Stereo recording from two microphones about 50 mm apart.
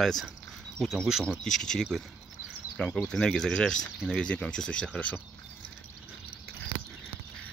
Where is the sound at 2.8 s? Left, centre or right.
Centre.